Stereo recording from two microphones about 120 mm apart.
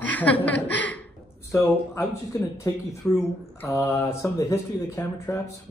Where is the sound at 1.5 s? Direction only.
25° left (ahead or behind).